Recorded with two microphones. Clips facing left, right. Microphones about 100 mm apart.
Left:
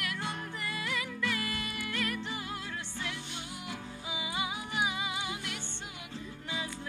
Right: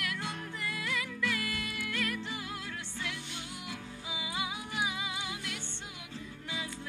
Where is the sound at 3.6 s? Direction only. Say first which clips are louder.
Left 2 dB; 5° left (ahead or behind).